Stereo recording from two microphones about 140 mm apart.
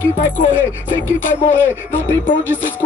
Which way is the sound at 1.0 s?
15° left (ahead or behind).